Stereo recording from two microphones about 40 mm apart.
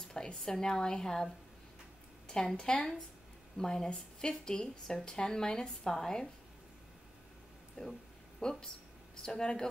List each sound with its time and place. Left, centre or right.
0.1 s speech: centre
7.8 s speech: centre